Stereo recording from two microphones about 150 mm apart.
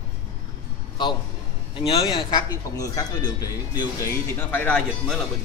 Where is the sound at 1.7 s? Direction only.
35° left (ahead or behind).